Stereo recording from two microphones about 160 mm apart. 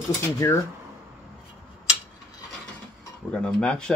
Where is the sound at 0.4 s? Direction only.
15° left (ahead or behind).